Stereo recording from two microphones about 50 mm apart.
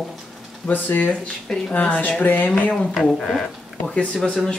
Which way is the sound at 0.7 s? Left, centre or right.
Left.